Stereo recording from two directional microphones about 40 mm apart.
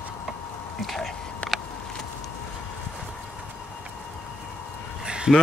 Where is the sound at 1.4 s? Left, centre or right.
Left.